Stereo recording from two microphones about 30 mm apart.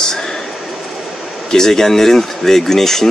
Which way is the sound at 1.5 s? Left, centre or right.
Centre.